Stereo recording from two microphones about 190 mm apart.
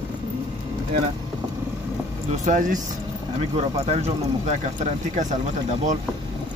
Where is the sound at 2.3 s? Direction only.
40° right (ahead or behind).